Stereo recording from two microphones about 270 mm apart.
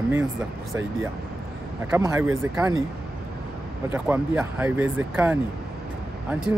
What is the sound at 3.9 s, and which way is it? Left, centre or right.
Speech, centre.